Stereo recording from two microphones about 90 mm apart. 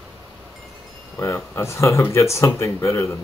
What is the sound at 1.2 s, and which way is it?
Speech, 35° left (ahead or behind).